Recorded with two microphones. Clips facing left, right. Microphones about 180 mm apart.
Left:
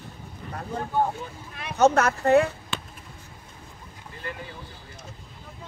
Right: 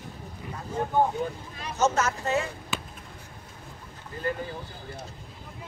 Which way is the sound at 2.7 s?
5° right (ahead or behind).